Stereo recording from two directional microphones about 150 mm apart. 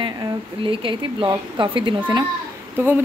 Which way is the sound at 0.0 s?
35° right (ahead or behind).